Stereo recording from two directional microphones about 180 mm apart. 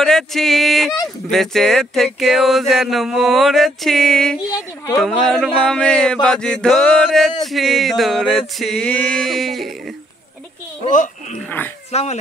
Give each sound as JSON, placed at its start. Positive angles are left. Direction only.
{"t": 0.0, "sound": "speech", "side_deg": 0}
{"t": 4.4, "sound": "speech", "side_deg": 20}
{"t": 5.0, "sound": "speech", "side_deg": 5}
{"t": 10.9, "sound": "speech", "side_deg": 45}
{"t": 11.4, "sound": "speech", "side_deg": 10}
{"t": 11.9, "sound": "speech", "side_deg": 35}